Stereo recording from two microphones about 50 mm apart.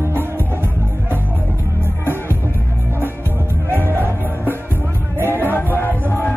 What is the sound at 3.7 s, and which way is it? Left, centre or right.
Music, right.